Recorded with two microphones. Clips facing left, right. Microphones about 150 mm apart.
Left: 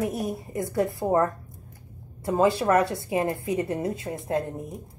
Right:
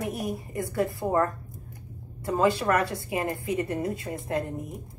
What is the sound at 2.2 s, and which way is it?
A woman's voice, 20° left (ahead or behind).